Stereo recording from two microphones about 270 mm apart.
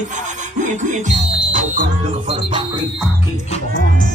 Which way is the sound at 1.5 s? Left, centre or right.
Right.